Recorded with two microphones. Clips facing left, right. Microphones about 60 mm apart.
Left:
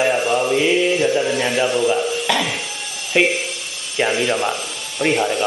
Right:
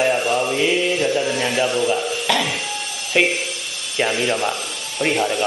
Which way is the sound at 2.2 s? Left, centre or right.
Centre.